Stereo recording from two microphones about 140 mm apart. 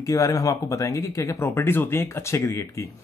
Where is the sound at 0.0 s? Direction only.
25° left (ahead or behind).